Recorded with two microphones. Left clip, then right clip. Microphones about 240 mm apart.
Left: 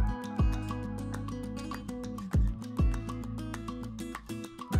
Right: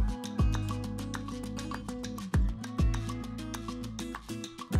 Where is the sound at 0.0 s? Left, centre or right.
Centre.